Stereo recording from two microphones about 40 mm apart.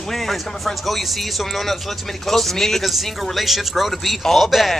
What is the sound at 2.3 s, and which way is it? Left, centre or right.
Speech, centre.